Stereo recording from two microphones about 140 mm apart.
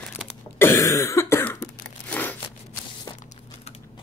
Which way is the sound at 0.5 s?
20° left (ahead or behind).